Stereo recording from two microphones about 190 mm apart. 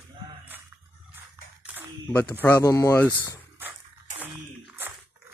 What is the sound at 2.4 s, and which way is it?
Speech, 15° left (ahead or behind).